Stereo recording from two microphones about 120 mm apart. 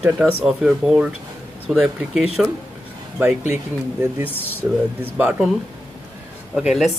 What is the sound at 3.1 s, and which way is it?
Speech, 15° right (ahead or behind).